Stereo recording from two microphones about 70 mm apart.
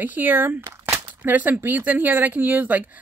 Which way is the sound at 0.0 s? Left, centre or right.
Right.